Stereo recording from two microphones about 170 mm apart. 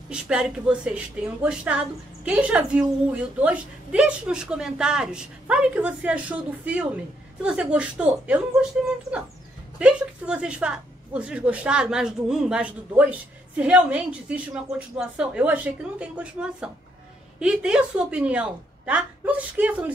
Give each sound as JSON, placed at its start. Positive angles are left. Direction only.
{"t": 0.1, "sound": "a woman's voice", "side_deg": -5}
{"t": 9.8, "sound": "a woman's voice", "side_deg": -5}